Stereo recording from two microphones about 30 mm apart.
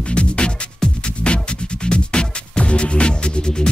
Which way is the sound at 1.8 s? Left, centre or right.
Left.